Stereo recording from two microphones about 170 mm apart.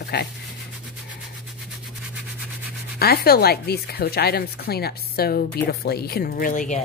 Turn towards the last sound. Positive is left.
turn(degrees=45)  # may be behind; listen again after turning